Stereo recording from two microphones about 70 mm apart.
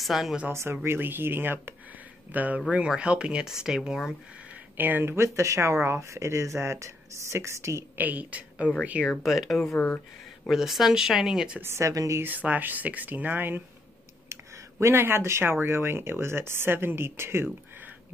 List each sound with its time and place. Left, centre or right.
0.0 s speech: centre
0.5 s speech: right; by 4.1 s centre
4.7 s speech: right
8.0 s a woman's voice: right
9.2 s speech: centre
9.8 s speech: left
10.5 s speech: centre
11.6 s speech: right
11.9 s speech: right
12.2 s speech: right
14.3 s speech: right